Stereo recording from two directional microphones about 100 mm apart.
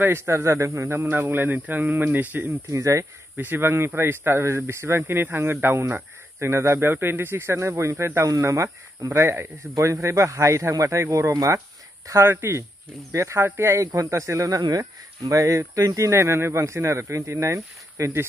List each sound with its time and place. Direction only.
0.0 s speech: 20° right (ahead or behind)
2.7 s speech: 30° right (ahead or behind)